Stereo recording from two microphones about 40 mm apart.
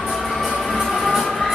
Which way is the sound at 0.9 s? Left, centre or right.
Centre.